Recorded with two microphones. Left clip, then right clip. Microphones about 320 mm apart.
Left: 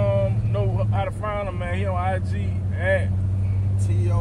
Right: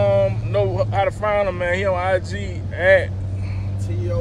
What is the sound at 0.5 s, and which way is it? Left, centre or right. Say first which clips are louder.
Speech: right 9 dB; right.